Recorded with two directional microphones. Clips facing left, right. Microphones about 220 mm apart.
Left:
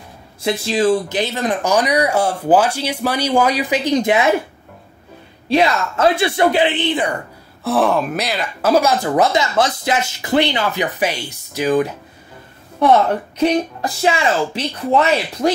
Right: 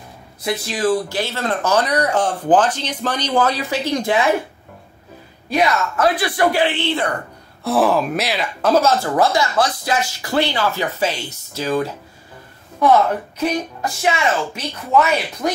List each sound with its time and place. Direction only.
0.4 s speech: 25° left (ahead or behind)
5.5 s speech: 25° left (ahead or behind)
7.6 s speech: centre (ahead or behind); by 11.9 s 15° left (ahead or behind)
13.4 s speech: 30° left (ahead or behind)